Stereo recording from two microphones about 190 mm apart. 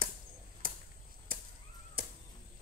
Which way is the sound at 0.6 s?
50° right (ahead or behind).